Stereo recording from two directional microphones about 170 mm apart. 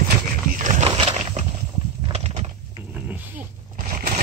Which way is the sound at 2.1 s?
35° right (ahead or behind).